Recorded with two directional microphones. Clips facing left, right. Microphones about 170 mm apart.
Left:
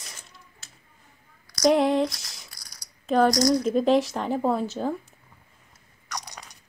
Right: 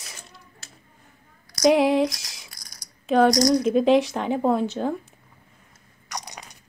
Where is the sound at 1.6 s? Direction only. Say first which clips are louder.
Right 2 dB; 5° right (ahead or behind).